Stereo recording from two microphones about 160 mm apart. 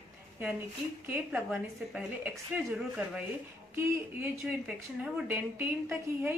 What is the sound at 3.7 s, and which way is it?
A woman's voice, 15° right (ahead or behind).